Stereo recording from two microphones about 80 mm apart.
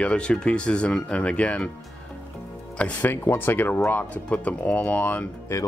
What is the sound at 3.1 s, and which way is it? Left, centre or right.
Speech, left.